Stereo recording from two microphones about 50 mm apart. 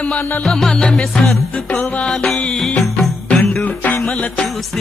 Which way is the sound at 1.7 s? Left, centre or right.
Left.